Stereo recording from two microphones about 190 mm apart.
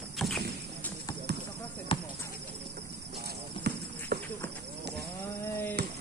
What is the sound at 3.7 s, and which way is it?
Horse, 60° right (ahead or behind).